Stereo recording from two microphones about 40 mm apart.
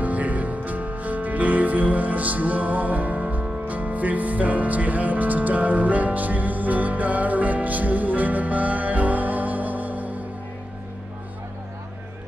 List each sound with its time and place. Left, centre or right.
0.0 s music: right